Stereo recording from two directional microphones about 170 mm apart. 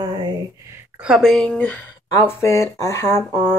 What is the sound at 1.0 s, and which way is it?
A woman's voice, centre (ahead or behind).